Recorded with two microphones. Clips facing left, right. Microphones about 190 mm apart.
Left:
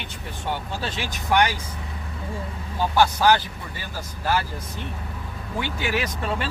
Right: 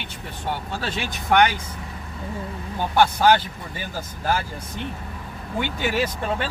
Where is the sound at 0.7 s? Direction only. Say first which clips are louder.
Right 1 dB; 60° right (ahead or behind).